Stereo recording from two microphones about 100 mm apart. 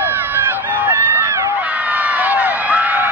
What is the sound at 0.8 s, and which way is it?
Crowd, 20° right (ahead or behind).